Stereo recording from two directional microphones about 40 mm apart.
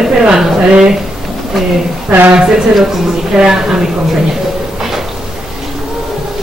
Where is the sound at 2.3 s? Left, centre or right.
Centre.